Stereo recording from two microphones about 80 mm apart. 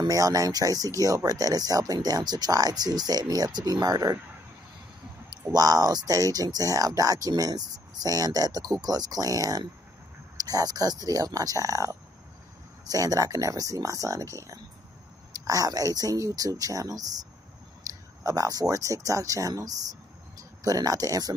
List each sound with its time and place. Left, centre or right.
0.0 s speech: right
5.5 s speech: right